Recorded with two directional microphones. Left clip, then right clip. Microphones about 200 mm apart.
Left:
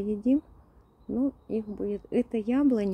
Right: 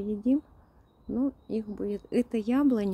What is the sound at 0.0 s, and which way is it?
Speech, 15° left (ahead or behind).